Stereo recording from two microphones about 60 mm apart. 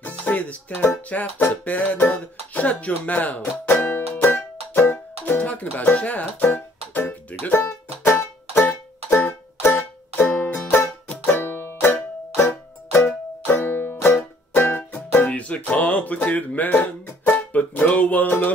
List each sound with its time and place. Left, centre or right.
0.0 s music: left
1.1 s speech: left
3.8 s music: left
5.4 s speech: left
6.9 s music: left
7.6 s music: left
15.7 s speech: left